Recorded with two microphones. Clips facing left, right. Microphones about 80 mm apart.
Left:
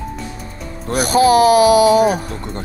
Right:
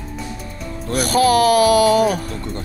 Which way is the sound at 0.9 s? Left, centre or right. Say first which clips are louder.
Left 3 dB; centre.